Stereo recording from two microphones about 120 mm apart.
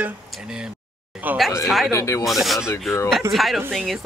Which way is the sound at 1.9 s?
25° left (ahead or behind).